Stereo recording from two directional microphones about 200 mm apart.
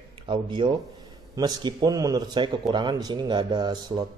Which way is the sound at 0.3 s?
25° right (ahead or behind).